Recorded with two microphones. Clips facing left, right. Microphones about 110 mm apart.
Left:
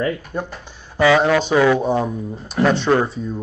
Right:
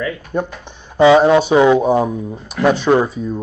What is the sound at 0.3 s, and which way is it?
Speech, 20° right (ahead or behind).